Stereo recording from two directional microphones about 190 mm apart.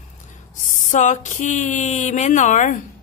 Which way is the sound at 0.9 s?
40° left (ahead or behind).